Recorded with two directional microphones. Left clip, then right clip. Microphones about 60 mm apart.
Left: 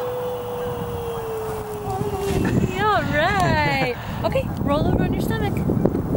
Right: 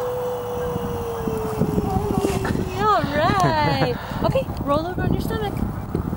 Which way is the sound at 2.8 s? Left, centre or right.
Right.